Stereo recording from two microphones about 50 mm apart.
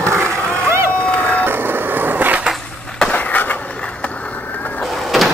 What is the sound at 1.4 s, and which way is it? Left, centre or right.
Skateboard, right.